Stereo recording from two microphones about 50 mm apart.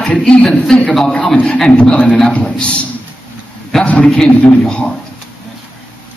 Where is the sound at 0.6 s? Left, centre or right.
Centre.